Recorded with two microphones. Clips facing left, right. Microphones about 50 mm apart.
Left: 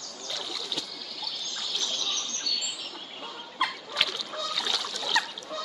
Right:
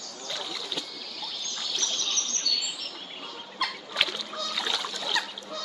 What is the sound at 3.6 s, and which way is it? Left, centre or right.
Splash, centre.